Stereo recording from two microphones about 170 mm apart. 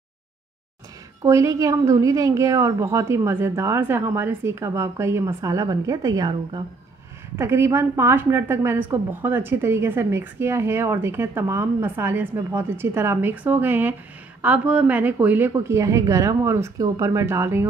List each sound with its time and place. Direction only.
1.2 s a woman's voice: 20° right (ahead or behind)